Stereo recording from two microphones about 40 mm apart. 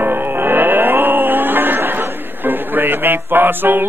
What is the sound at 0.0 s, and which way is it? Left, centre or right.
Music, right.